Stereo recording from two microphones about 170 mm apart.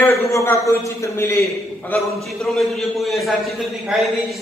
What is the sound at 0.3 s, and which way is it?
A man's voice, 15° left (ahead or behind).